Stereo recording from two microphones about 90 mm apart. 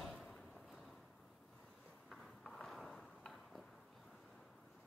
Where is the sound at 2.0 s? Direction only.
5° left (ahead or behind).